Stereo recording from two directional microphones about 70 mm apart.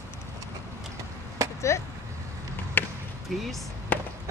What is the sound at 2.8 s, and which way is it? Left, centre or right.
Basketball bounce, left.